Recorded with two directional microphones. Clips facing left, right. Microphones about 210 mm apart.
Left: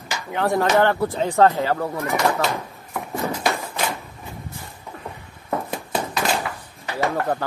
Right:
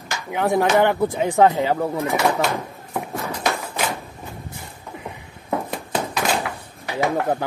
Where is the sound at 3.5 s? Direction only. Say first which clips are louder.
Even; centre (ahead or behind).